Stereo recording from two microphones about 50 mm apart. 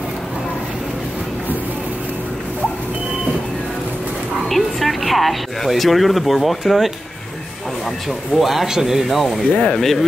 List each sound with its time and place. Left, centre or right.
4.5 s speech: centre
8.4 s speech: centre
9.5 s speech: left